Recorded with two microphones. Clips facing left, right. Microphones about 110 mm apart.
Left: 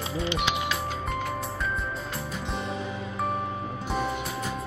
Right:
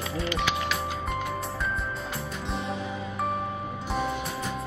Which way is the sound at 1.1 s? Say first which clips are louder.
Even; centre (ahead or behind).